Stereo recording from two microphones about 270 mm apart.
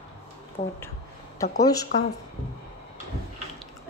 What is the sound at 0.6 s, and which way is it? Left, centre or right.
A woman's voice, left.